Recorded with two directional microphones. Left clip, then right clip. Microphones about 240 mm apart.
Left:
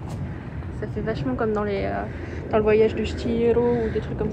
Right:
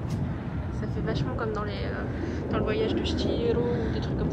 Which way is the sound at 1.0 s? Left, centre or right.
Left.